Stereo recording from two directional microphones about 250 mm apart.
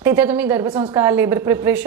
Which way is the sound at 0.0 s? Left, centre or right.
Centre.